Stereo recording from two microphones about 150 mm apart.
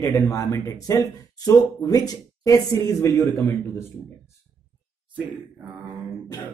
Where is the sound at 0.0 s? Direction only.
20° left (ahead or behind).